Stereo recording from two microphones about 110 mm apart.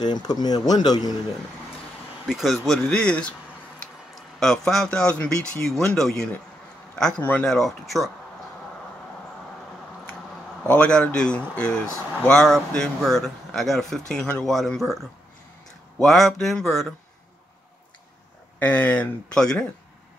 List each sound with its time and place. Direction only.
0.0 s speech: 40° left (ahead or behind)
2.2 s a man's voice: centre (ahead or behind)
10.7 s speech: 10° left (ahead or behind)
18.6 s speech: 15° left (ahead or behind)